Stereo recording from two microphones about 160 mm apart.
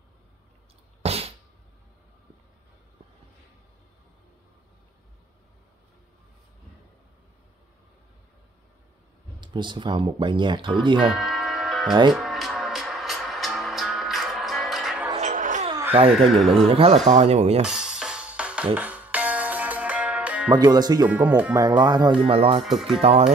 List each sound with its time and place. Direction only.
1.0 s a sound: 40° right (ahead or behind)
9.4 s speech: 30° right (ahead or behind)
11.1 s music: centre (ahead or behind)
15.1 s music: 50° right (ahead or behind)
15.9 s speech: 35° right (ahead or behind)
16.3 s speech: centre (ahead or behind)
16.5 s speech: 35° right (ahead or behind)
17.6 s music: 5° right (ahead or behind)
20.5 s speech: 25° right (ahead or behind)
21.1 s speech: 10° right (ahead or behind)
21.5 s speech: 25° right (ahead or behind)
22.6 s speech: centre (ahead or behind)
23.0 s speech: 40° right (ahead or behind)